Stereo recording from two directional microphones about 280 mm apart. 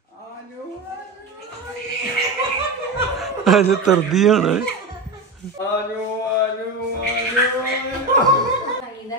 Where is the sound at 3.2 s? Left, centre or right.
Centre.